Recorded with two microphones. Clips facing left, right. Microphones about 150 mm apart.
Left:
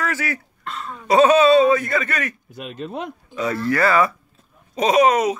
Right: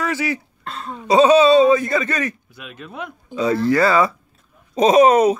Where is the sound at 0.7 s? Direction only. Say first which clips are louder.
Right 2 dB; 30° right (ahead or behind).